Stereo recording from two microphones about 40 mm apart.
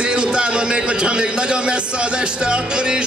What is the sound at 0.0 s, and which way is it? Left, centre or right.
A man's voice, right.